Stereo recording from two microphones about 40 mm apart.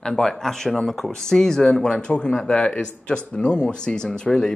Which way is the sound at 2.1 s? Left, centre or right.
Left.